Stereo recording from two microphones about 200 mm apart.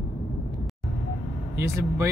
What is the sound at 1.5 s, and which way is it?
Speech, 15° right (ahead or behind).